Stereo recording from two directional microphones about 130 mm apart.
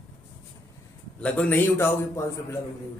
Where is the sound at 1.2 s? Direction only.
10° left (ahead or behind).